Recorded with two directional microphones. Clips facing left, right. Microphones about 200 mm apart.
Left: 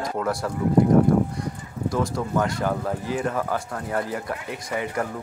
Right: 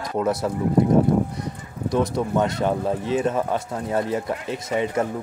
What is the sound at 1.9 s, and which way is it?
Speech, 20° right (ahead or behind).